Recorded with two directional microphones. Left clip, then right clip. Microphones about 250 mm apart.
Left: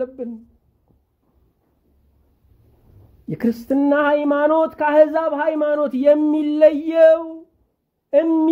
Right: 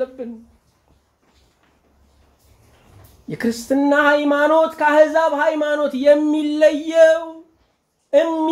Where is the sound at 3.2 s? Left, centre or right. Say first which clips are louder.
Even; left.